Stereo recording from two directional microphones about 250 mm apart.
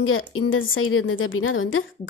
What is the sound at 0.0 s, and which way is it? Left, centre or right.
A woman's voice, left.